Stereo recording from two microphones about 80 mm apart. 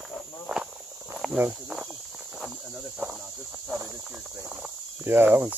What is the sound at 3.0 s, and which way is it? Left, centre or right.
Cricket, centre.